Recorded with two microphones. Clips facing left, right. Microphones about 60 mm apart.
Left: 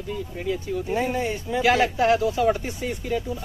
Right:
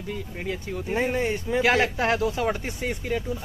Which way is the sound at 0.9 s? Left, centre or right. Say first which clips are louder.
Right 1 dB; right.